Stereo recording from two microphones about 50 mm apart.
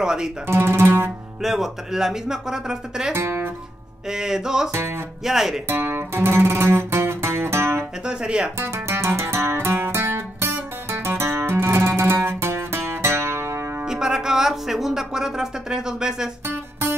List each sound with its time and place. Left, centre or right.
0.0 s speech: centre
0.5 s speech: right
1.4 s speech: centre
3.1 s music: right
4.1 s speech: centre
4.7 s speech: right
5.2 s speech: centre
5.7 s music: right
8.0 s speech: centre
8.5 s music: right
13.8 s speech: centre